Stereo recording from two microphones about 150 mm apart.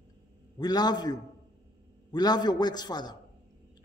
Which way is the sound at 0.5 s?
25° left (ahead or behind).